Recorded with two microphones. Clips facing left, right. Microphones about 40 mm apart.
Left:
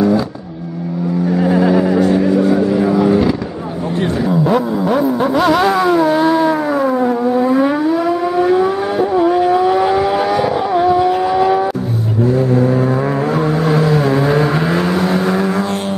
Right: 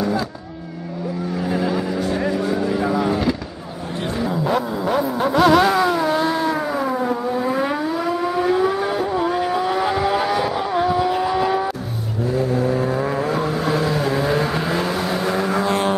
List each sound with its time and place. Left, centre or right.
1.4 s vehicle: centre